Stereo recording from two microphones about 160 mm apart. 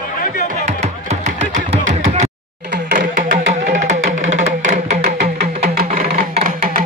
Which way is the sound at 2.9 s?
60° right (ahead or behind).